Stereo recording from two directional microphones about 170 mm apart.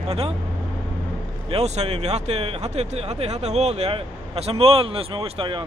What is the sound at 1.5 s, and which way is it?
Speech, 40° right (ahead or behind).